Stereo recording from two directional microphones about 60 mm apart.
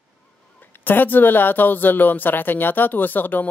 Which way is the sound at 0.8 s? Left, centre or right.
Left.